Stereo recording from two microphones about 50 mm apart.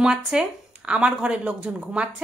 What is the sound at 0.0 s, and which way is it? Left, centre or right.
Speech, centre.